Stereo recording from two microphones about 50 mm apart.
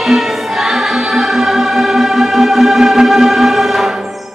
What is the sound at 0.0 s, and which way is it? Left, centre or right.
Choir, centre.